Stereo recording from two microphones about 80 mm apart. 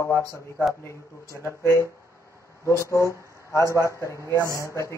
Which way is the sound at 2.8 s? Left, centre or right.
Left.